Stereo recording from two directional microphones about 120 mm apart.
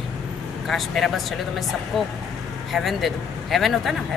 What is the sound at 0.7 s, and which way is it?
Speech, centre (ahead or behind).